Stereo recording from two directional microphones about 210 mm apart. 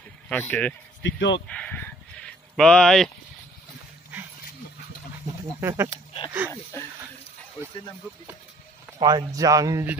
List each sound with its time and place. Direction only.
0.3 s speech: 5° left (ahead or behind)
1.0 s speech: 60° left (ahead or behind)
1.5 s a sound: 5° left (ahead or behind)
5.6 s speech: 10° right (ahead or behind)
6.5 s speech: 10° left (ahead or behind)
9.0 s speech: 15° right (ahead or behind)